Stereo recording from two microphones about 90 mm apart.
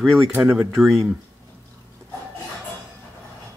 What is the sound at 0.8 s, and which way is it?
Speech, centre (ahead or behind).